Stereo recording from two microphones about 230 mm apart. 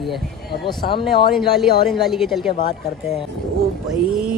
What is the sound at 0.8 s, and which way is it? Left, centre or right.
Speech, left.